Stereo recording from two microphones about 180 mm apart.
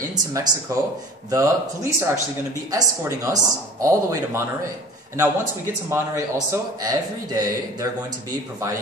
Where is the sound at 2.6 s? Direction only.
20° right (ahead or behind).